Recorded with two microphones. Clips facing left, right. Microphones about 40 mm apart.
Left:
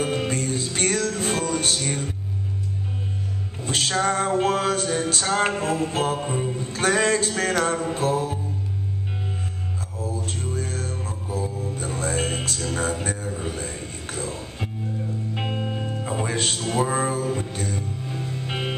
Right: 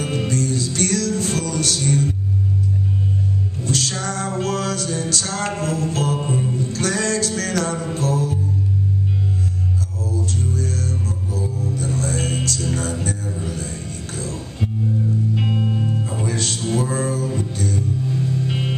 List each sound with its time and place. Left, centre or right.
0.0 s music: left
3.6 s music: left
10.0 s music: left
16.1 s music: left